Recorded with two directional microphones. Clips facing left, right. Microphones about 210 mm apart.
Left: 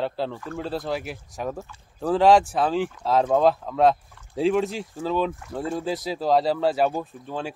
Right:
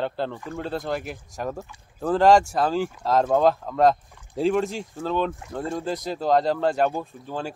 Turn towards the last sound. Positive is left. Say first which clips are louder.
# even
turn(degrees=0)  # may be behind; listen again after turning